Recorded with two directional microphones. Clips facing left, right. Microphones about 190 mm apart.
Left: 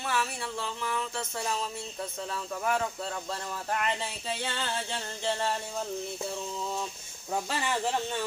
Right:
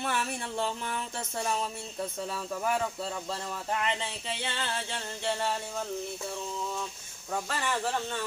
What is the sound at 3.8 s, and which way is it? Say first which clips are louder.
Speech: even; 5° left (ahead or behind).